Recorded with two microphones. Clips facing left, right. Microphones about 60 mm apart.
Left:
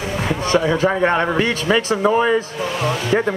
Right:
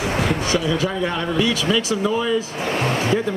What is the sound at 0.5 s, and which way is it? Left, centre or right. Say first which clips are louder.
Speech: left 4 dB; left.